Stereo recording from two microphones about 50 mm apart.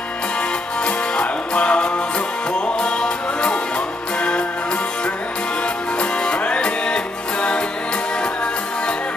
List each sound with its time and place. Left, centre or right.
0.8 s music: centre
5.9 s music: left